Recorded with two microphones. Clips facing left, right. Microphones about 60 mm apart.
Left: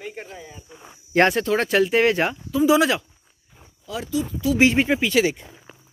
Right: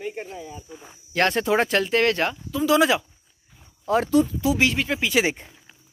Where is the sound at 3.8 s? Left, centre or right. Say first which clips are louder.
Right 7 dB; right.